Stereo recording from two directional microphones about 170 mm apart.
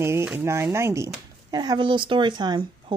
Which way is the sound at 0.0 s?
15° right (ahead or behind).